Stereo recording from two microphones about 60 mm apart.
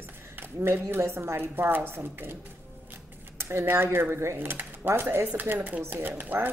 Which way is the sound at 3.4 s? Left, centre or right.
Right.